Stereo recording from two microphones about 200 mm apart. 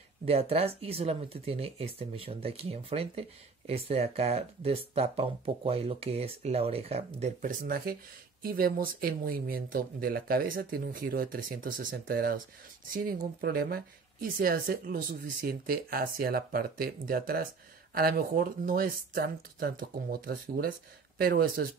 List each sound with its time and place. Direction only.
0.2 s speech: 30° right (ahead or behind); by 21.6 s 50° right (ahead or behind)